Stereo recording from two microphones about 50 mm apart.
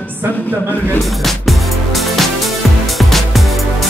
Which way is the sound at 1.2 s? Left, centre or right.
Centre.